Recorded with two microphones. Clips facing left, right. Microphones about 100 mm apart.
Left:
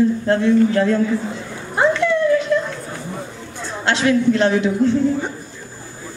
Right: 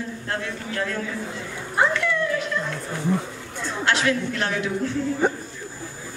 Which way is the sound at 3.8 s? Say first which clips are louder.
Left 7 dB; 25° left (ahead or behind).